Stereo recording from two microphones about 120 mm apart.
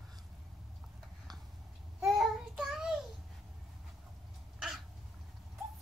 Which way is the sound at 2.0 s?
Centre (ahead or behind).